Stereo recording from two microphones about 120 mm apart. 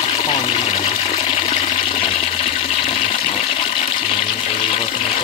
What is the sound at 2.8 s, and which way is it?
Toilet flush, 60° left (ahead or behind).